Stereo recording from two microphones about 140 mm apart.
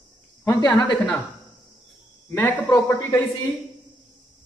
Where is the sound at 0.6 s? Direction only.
30° left (ahead or behind).